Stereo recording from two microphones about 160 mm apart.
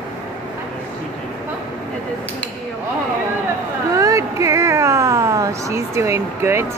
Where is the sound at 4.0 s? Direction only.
20° right (ahead or behind).